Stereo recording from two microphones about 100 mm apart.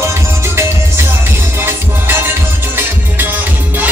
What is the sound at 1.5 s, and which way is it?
Music, 20° right (ahead or behind).